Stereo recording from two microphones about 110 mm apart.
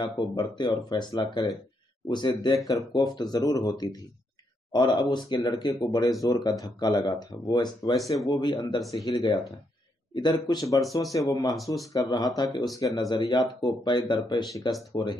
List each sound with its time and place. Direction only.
0.0 s speech: 40° left (ahead or behind)